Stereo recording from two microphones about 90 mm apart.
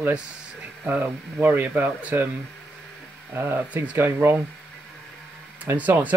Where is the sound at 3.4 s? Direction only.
25° right (ahead or behind).